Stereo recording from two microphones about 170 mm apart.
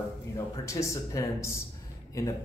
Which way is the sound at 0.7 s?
15° left (ahead or behind).